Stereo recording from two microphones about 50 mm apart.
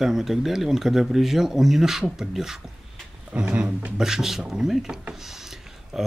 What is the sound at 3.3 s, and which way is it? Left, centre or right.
Speech, right.